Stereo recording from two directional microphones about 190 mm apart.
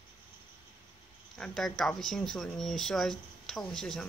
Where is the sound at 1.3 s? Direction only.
5° left (ahead or behind).